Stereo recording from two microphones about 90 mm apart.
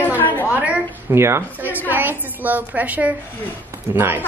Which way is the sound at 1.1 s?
30° right (ahead or behind).